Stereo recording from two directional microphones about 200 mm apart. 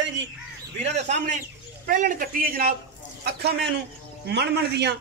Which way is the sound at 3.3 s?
55° right (ahead or behind).